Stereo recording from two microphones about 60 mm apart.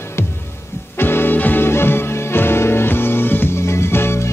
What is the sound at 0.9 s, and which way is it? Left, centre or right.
Music, left.